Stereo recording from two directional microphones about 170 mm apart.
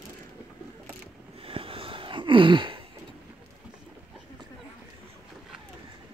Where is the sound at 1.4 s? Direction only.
30° right (ahead or behind).